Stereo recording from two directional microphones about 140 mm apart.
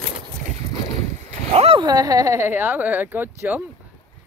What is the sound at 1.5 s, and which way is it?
Speech, 45° right (ahead or behind).